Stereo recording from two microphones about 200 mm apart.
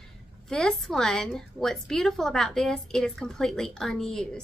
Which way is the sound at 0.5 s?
Centre (ahead or behind).